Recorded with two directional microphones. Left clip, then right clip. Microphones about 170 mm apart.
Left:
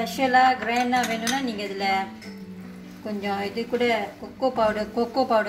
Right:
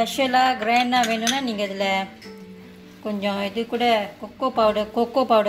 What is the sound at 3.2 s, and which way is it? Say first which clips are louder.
Speech: right 2 dB; 65° right (ahead or behind).